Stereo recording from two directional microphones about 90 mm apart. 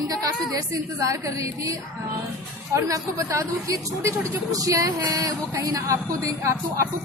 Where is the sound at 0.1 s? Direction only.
40° right (ahead or behind).